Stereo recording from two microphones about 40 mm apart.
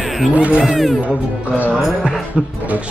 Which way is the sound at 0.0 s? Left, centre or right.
Centre.